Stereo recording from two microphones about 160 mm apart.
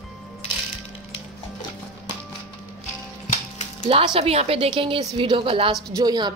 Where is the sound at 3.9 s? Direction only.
35° right (ahead or behind).